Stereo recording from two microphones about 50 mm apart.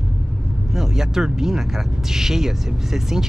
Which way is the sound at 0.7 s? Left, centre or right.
Centre.